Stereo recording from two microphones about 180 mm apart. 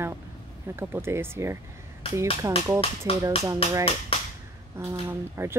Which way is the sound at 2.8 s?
30° left (ahead or behind).